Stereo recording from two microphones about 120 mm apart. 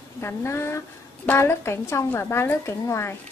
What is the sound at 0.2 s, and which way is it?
A woman's voice, 20° left (ahead or behind).